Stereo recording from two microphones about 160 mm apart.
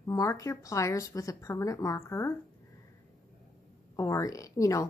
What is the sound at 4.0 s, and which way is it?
Speech, 20° left (ahead or behind).